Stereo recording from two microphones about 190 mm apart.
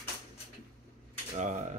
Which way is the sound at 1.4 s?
40° right (ahead or behind).